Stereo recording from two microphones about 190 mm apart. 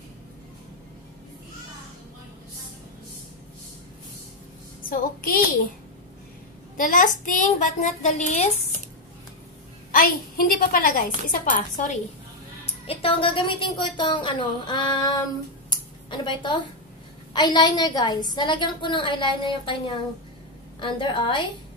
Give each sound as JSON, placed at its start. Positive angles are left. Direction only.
{"t": 4.8, "sound": "a woman's voice", "side_deg": 50}
{"t": 6.8, "sound": "a woman's voice", "side_deg": 45}
{"t": 9.8, "sound": "a woman's voice", "side_deg": 50}
{"t": 12.8, "sound": "a woman's voice", "side_deg": 30}
{"t": 15.7, "sound": "a sound", "side_deg": 25}
{"t": 17.3, "sound": "a woman's voice", "side_deg": 25}
{"t": 20.8, "sound": "a woman's voice", "side_deg": 25}